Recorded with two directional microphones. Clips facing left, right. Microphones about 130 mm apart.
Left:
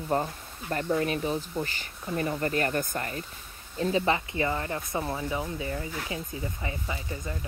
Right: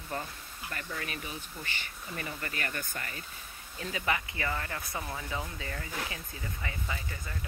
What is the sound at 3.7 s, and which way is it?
Speech, 30° left (ahead or behind).